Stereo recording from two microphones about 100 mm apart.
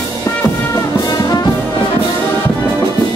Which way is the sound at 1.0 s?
40° left (ahead or behind).